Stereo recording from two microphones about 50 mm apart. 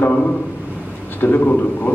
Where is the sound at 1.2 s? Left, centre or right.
Left.